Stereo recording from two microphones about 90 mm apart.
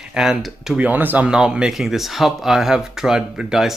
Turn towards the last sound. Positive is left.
turn(degrees=-5)  # may be behind; listen again after turning